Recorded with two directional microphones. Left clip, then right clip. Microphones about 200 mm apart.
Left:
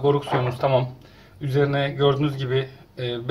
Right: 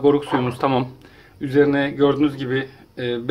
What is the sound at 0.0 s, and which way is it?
Speech, 50° right (ahead or behind).